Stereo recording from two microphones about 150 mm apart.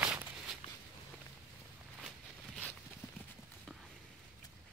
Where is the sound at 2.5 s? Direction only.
10° left (ahead or behind).